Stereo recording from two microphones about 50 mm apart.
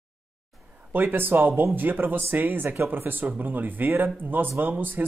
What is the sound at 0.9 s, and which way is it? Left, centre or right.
Speech, right.